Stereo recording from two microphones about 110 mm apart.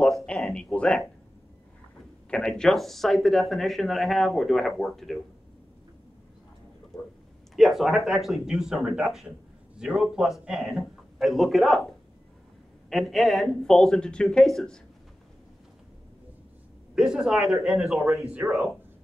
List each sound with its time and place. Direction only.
0.0 s a sound: 5° left (ahead or behind)
2.3 s speech: 5° left (ahead or behind)
6.9 s a sound: 35° left (ahead or behind)
7.5 s speech: centre (ahead or behind)
12.9 s speech: centre (ahead or behind)
16.9 s speech: 5° right (ahead or behind)
18.4 s speech: 30° right (ahead or behind)